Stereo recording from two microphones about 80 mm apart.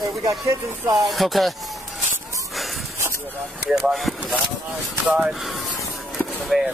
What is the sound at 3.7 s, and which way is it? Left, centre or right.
Speech, centre.